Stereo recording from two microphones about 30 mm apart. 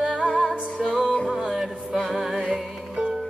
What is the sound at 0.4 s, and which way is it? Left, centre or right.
Music, centre.